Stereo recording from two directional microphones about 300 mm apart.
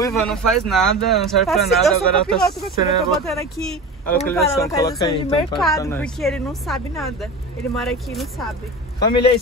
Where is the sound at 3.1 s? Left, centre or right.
Centre.